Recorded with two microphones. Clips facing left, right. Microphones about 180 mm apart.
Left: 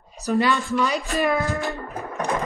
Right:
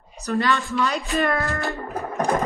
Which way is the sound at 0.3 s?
15° left (ahead or behind).